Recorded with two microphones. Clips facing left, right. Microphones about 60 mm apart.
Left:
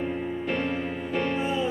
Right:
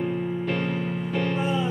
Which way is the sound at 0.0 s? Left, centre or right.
Centre.